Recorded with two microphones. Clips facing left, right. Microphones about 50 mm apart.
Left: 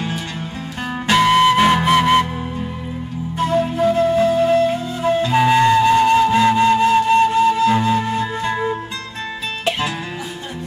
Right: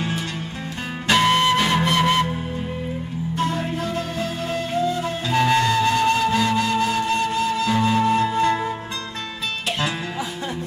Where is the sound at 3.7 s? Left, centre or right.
Centre.